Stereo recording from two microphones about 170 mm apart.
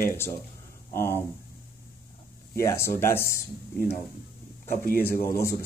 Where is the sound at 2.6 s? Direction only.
15° left (ahead or behind).